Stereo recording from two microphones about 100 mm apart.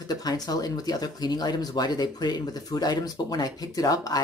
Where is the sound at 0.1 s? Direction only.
40° left (ahead or behind).